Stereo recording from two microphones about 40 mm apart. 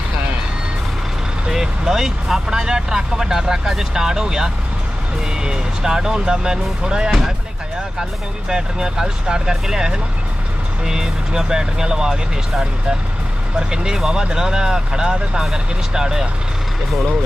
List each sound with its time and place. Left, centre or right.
1.5 s speech: centre
8.5 s speech: right